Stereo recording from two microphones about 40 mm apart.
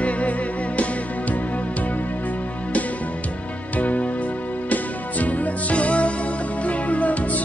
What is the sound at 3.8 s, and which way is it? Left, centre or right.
Music, left.